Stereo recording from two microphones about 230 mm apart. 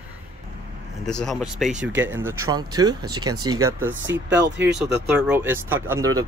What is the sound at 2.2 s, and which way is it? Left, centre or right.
Speech, centre.